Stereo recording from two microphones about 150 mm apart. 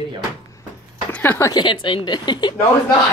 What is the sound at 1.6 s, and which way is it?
Speech, 35° left (ahead or behind).